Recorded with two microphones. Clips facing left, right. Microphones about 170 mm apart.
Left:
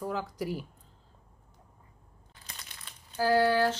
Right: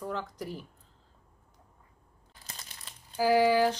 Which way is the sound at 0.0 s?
5° left (ahead or behind).